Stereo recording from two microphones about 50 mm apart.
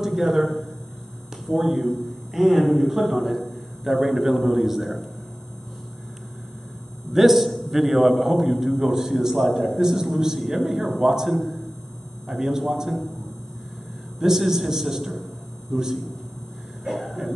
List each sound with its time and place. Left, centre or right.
0.0 s a man's voice: centre
7.1 s a man's voice: centre
14.2 s a man's voice: centre
16.8 s a sound: centre